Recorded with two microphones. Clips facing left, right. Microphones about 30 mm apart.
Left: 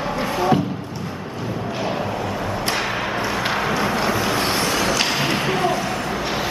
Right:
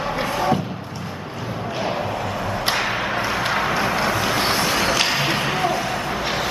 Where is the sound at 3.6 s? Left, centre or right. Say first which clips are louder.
Even; centre.